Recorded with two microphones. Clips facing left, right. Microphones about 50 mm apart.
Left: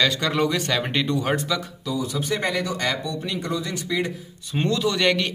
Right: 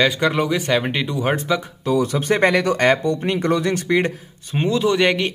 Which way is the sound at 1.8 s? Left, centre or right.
Right.